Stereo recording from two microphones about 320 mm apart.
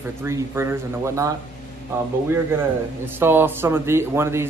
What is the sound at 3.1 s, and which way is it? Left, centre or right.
Speech, centre.